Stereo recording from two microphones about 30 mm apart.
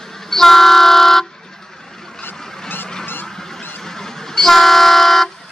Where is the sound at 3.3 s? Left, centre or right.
Centre.